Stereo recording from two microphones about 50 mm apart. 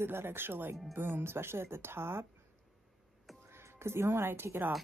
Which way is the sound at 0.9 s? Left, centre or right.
Right.